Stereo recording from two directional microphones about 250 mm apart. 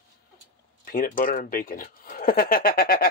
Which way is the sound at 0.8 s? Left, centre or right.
Left.